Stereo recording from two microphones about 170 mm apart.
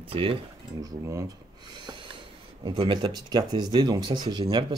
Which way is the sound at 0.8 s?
20° right (ahead or behind).